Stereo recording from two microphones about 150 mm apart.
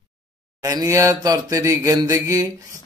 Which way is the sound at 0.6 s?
25° right (ahead or behind).